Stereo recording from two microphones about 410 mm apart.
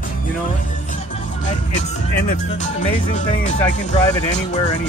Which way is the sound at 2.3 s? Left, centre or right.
Centre.